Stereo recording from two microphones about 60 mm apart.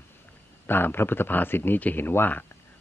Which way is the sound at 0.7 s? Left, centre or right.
Left.